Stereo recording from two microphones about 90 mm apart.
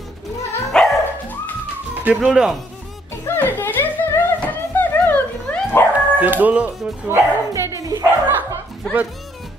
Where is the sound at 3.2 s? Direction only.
25° left (ahead or behind).